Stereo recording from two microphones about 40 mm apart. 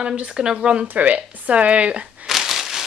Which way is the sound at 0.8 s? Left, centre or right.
Right.